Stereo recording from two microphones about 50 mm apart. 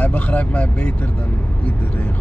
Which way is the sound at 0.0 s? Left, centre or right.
Left.